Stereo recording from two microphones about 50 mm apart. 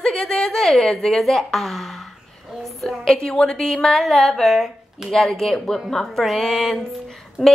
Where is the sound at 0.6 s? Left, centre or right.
Centre.